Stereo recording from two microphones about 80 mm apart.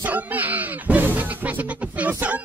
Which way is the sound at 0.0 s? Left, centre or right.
Right.